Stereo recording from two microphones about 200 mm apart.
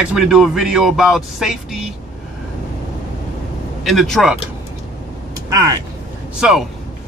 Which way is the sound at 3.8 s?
Centre (ahead or behind).